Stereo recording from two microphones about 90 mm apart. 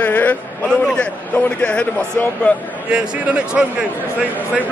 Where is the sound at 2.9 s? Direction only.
10° right (ahead or behind).